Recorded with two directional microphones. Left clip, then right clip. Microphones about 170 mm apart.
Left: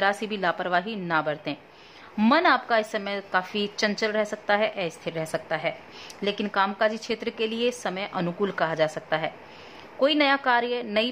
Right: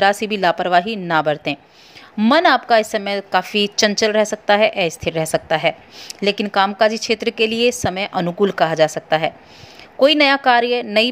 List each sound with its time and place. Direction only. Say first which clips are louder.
0.0 s a woman's voice: right 9 dB; 30° right (ahead or behind)